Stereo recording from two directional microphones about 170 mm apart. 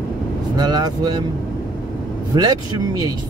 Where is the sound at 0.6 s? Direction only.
25° right (ahead or behind).